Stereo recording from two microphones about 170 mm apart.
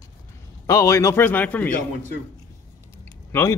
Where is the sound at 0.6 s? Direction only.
20° left (ahead or behind).